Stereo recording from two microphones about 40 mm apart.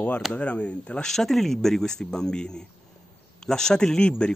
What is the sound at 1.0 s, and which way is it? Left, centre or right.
Speech, centre.